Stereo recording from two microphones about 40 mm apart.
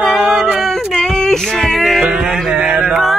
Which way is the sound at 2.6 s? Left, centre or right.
Right.